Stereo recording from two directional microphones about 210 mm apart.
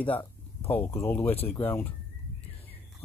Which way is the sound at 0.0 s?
10° left (ahead or behind).